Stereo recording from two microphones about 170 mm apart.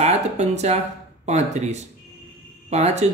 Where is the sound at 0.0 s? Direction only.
40° right (ahead or behind).